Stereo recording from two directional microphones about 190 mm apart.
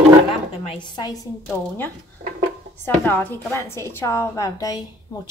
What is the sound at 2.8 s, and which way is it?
A woman's voice, 10° left (ahead or behind).